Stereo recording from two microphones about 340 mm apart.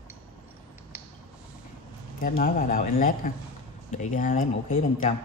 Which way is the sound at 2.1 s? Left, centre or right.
Left.